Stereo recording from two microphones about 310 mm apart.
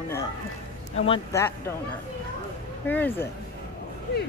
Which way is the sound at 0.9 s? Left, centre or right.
Centre.